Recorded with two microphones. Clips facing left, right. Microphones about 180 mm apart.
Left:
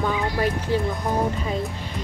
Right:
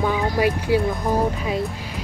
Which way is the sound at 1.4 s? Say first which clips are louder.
Right 2 dB; 5° right (ahead or behind).